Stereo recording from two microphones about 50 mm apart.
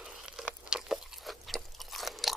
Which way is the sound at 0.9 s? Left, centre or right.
Centre.